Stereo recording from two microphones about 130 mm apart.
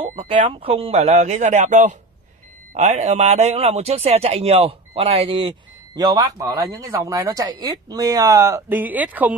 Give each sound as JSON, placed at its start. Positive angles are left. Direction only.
{"t": 0.1, "sound": "a man's voice", "side_deg": -45}
{"t": 5.9, "sound": "speech", "side_deg": -30}